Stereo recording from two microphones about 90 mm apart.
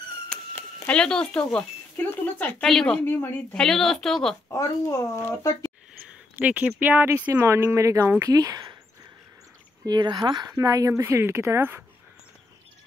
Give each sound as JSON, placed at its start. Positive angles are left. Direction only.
{"t": 0.8, "sound": "speech", "side_deg": 10}
{"t": 2.6, "sound": "speech", "side_deg": 5}
{"t": 3.1, "sound": "a woman's voice", "side_deg": 20}
{"t": 3.5, "sound": "speech", "side_deg": 5}
{"t": 4.5, "sound": "speech", "side_deg": 35}
{"t": 6.3, "sound": "speech", "side_deg": -15}
{"t": 9.8, "sound": "speech", "side_deg": -55}